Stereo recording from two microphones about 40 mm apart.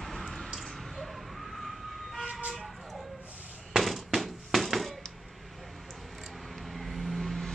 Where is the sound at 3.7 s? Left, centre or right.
Centre.